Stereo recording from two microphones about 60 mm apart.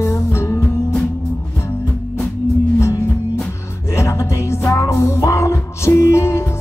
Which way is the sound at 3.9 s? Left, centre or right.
Left.